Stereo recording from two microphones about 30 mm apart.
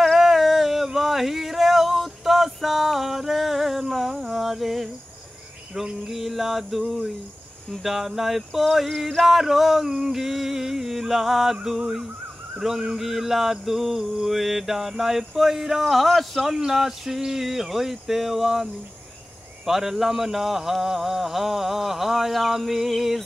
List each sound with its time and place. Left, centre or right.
0.0 s a sound: centre
6.0 s speech: centre
12.9 s speech: centre
15.8 s speech: centre
16.5 s speech: centre